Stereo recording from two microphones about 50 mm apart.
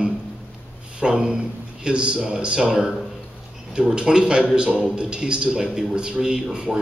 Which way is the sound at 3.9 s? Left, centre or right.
Centre.